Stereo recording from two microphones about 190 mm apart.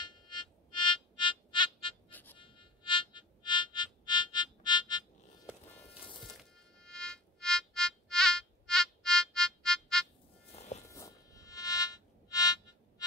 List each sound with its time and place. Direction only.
0.0 s frog: 25° left (ahead or behind)
2.0 s music: 10° left (ahead or behind)
2.3 s music: 25° left (ahead or behind)
6.3 s music: 5° left (ahead or behind)
10.5 s a sound: 35° left (ahead or behind)
10.9 s music: 15° left (ahead or behind)